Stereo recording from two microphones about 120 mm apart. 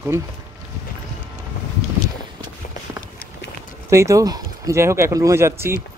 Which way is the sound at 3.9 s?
25° right (ahead or behind).